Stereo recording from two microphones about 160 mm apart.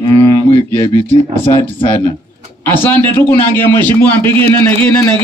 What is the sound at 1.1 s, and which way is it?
Speech, 35° left (ahead or behind).